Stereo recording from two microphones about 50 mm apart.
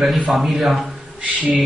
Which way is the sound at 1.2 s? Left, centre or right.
Right.